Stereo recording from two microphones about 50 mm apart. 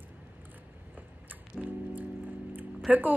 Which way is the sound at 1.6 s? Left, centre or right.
Right.